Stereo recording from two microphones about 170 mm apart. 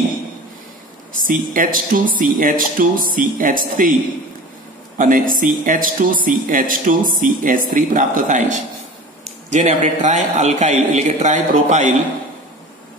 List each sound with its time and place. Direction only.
1.2 s speech: 55° right (ahead or behind)
4.9 s speech: 55° right (ahead or behind)